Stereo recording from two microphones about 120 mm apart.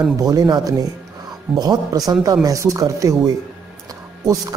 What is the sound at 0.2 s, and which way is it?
A man's voice, 30° right (ahead or behind).